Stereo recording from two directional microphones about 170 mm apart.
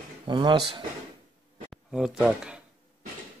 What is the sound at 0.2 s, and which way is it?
Speech, 30° right (ahead or behind).